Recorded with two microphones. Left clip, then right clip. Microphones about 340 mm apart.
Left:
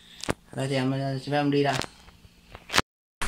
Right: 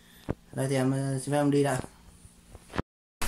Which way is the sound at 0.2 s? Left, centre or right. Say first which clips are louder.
Left 7 dB; left.